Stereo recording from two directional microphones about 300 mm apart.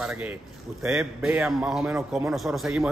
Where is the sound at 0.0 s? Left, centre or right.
Centre.